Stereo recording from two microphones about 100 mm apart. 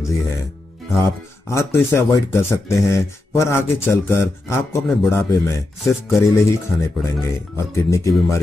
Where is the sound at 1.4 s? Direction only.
25° left (ahead or behind).